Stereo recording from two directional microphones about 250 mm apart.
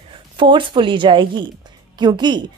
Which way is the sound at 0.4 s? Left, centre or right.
Centre.